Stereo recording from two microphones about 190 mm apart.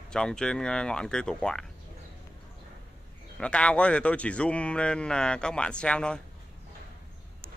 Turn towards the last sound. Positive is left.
turn(degrees=5)  # may be behind; listen again after turning